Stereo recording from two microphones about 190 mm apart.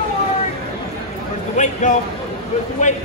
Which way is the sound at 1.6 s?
40° left (ahead or behind).